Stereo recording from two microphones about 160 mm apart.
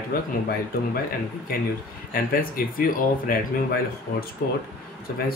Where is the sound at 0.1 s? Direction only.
65° left (ahead or behind).